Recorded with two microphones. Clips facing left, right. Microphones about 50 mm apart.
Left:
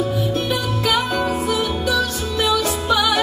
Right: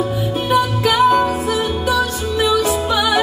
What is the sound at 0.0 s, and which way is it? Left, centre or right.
Music, centre.